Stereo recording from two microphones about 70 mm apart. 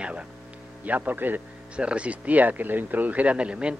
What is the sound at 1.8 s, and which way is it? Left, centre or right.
Speech, centre.